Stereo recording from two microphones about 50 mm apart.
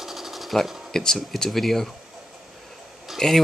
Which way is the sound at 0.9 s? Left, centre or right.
Centre.